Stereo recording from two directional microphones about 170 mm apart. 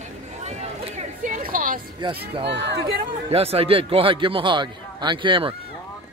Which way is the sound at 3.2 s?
35° right (ahead or behind).